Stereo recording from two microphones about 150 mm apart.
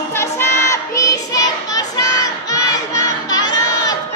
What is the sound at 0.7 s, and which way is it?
Child singing, 20° left (ahead or behind).